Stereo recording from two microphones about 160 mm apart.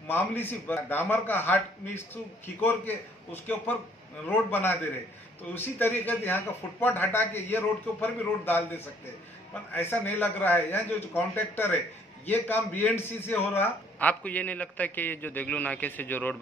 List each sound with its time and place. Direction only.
0.1 s a man's voice: 10° left (ahead or behind)